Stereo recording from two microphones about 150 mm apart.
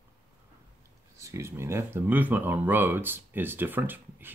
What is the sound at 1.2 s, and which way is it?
Speech, 20° right (ahead or behind).